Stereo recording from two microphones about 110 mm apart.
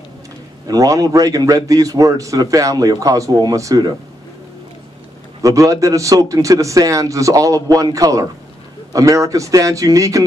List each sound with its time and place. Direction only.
0.7 s a man's voice: 30° right (ahead or behind)
5.4 s a man's voice: 30° right (ahead or behind)